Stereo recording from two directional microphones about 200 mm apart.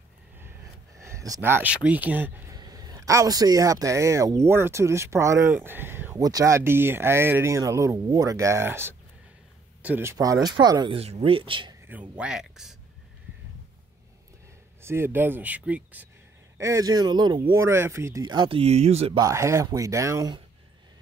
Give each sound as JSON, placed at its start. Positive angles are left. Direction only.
{"t": 0.9, "sound": "speech", "side_deg": -15}
{"t": 2.5, "sound": "a man's voice", "side_deg": -20}
{"t": 11.9, "sound": "speech", "side_deg": -5}
{"t": 14.8, "sound": "a man's voice", "side_deg": -10}
{"t": 19.2, "sound": "a man's voice", "side_deg": -15}